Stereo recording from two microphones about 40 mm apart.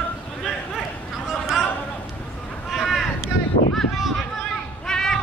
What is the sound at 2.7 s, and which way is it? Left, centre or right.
Boat, centre.